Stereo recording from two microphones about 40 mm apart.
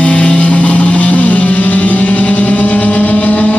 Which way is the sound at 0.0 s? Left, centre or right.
Left.